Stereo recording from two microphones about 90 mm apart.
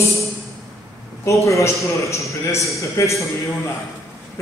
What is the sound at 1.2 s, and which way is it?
A man's voice, 35° left (ahead or behind).